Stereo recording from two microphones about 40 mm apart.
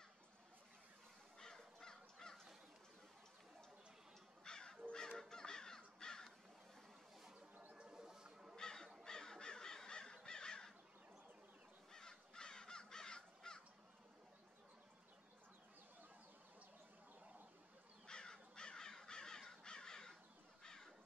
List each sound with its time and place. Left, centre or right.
1.4 s crow: centre
4.5 s crow: centre
7.7 s a sound: right
8.5 s crow: centre
11.9 s crow: centre
18.0 s crow: centre